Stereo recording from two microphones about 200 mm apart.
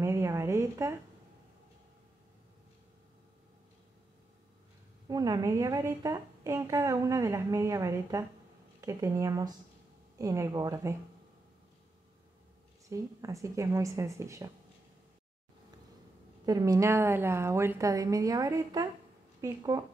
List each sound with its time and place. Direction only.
0.0 s a sound: 15° right (ahead or behind)
5.0 s a woman's voice: 20° right (ahead or behind)
12.9 s a woman's voice: 15° right (ahead or behind)
16.4 s a woman's voice: 20° right (ahead or behind)